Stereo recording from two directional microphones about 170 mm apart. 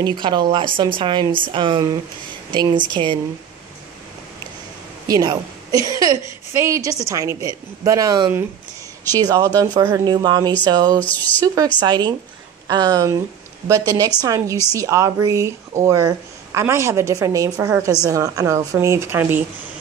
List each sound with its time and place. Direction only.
0.0 s a woman's voice: 25° right (ahead or behind)
5.0 s a woman's voice: 20° right (ahead or behind)
11.0 s speech: 10° left (ahead or behind)
11.4 s a woman's voice: 20° right (ahead or behind)